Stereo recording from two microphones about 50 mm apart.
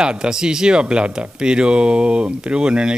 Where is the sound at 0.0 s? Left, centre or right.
Centre.